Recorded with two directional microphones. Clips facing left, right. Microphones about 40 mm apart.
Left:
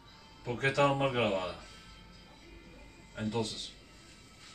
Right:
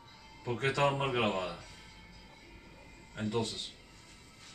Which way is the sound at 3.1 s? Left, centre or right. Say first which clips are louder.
Right 1 dB; centre.